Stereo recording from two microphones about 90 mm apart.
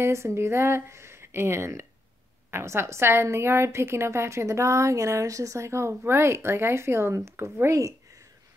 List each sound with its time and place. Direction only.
0.0 s a woman's voice: 30° right (ahead or behind)